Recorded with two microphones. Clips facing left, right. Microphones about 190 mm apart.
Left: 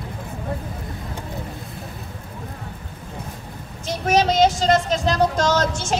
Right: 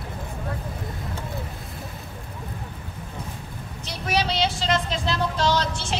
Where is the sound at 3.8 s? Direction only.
45° left (ahead or behind).